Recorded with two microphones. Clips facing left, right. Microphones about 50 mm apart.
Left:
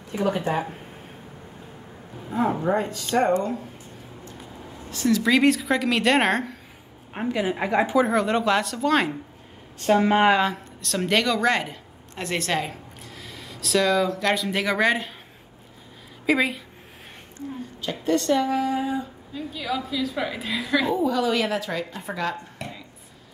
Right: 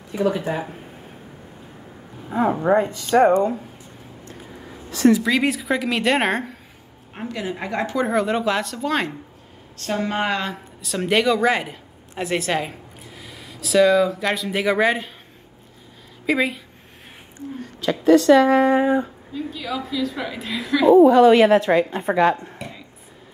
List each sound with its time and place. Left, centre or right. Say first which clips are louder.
0.4 s a woman's voice: even; centre
2.2 s speech: right 4 dB; centre
5.2 s a woman's voice: left 2 dB; centre
7.2 s a woman's voice: left 3 dB; centre
8.0 s a woman's voice: right 1 dB; centre
9.8 s a woman's voice: left 5 dB; centre
10.5 s speech: right 1 dB; centre
16.3 s a woman's voice: right 1 dB; centre
17.6 s a woman's voice: right 10 dB; right
18.6 s a woman's voice: right 8 dB; right
19.3 s a woman's voice: right 1 dB; centre
20.9 s a woman's voice: right 12 dB; right